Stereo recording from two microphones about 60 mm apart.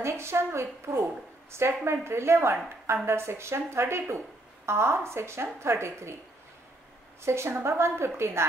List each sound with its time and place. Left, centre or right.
0.0 s speech: right
7.2 s speech: right